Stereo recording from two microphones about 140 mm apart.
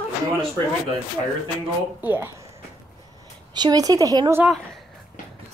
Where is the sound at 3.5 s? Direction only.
30° right (ahead or behind).